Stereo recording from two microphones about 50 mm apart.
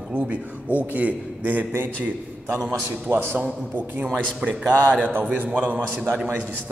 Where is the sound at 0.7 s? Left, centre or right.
Right.